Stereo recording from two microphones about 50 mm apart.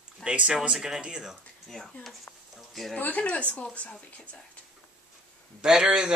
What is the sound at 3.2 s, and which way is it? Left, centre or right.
Speech, left.